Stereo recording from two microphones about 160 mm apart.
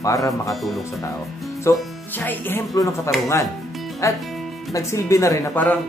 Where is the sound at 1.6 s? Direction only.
10° left (ahead or behind).